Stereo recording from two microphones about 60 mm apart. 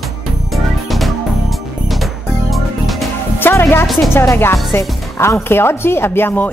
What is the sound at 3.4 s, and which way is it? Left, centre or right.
Music, left.